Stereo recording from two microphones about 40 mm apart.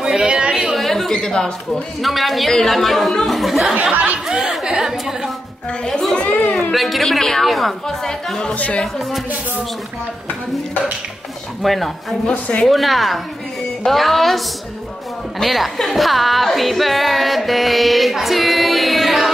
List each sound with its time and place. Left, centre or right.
0.0 s chatter: centre
0.3 s chatter: right
0.7 s a sound: centre
1.7 s speech: centre
4.0 s a woman's voice: right; by 5.3 s centre
5.7 s speech: centre
6.3 s a sound: left
6.7 s speech: centre
8.0 s speech: centre
8.5 s speech: left
11.6 s speech: centre
15.4 s speech: centre